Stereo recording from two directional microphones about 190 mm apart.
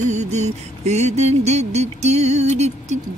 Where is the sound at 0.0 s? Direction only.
35° right (ahead or behind).